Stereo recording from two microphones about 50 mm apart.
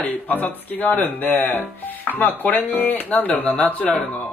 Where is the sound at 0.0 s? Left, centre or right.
Left.